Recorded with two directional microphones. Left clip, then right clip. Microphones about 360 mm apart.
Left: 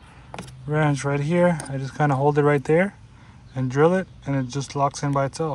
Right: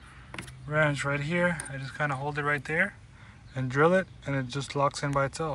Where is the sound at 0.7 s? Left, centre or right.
Centre.